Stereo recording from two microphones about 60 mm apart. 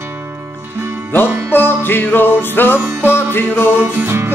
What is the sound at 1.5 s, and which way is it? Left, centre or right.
Music, left.